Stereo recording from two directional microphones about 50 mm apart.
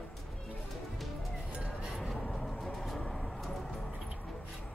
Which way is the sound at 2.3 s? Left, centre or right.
Centre.